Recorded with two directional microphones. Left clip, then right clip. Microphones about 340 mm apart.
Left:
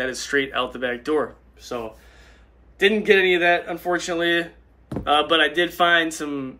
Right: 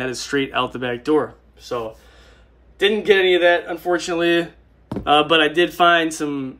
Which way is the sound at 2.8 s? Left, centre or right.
Centre.